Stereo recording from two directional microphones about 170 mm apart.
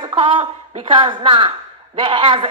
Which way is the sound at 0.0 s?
30° right (ahead or behind).